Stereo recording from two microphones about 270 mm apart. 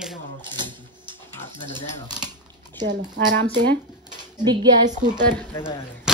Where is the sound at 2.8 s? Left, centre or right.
Right.